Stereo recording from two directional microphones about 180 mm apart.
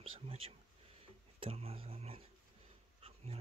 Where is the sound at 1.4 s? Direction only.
35° right (ahead or behind).